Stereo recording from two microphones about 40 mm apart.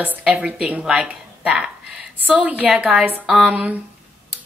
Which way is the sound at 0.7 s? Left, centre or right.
Right.